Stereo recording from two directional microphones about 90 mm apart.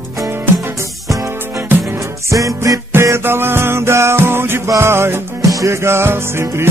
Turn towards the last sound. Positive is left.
turn(degrees=-30)  # may be behind; listen again after turning